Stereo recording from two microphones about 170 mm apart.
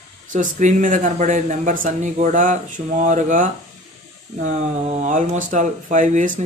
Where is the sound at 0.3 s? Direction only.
50° right (ahead or behind).